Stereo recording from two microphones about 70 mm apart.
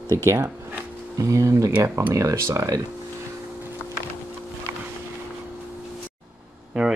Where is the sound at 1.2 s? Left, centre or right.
Right.